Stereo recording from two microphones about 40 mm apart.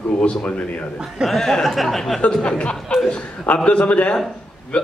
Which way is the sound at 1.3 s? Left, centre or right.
Centre.